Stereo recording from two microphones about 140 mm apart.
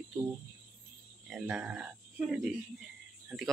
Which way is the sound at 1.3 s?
5° right (ahead or behind).